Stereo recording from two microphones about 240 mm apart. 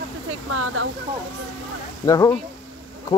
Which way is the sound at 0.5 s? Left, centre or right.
Right.